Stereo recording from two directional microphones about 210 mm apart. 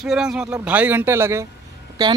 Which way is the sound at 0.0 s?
5° right (ahead or behind).